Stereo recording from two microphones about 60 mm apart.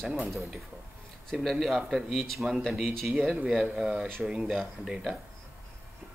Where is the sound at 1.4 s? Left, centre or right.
Centre.